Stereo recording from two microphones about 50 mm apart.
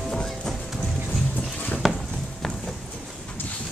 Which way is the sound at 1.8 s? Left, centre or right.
Centre.